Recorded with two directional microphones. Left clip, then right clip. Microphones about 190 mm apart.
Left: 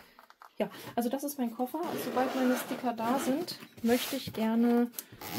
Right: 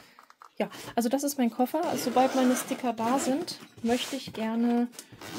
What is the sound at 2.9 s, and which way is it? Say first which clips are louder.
Speech: right 3 dB; 25° right (ahead or behind).